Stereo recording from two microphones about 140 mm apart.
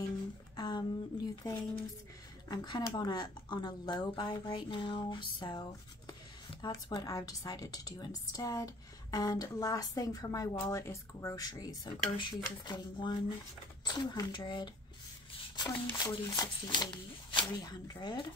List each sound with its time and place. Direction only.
0.6 s a woman's voice: 30° left (ahead or behind)